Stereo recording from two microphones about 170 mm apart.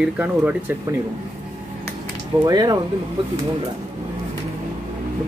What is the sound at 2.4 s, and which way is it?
Speech, 20° right (ahead or behind).